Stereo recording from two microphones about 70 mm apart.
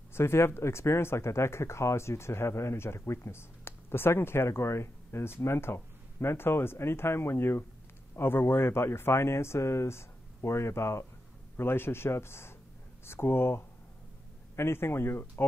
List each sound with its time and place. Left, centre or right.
0.1 s speech: left